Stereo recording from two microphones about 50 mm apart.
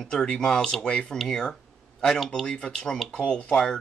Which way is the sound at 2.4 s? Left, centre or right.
Left.